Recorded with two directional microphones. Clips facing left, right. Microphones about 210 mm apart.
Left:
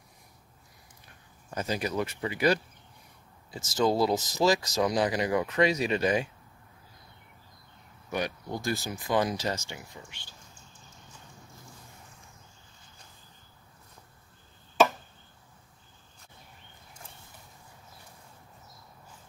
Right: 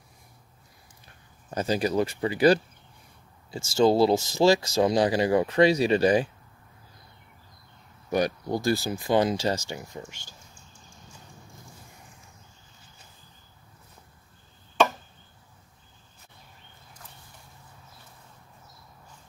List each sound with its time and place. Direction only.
1.5 s speech: 30° right (ahead or behind)
8.1 s speech: 40° right (ahead or behind)